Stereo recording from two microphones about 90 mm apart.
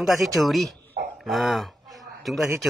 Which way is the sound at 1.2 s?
Centre (ahead or behind).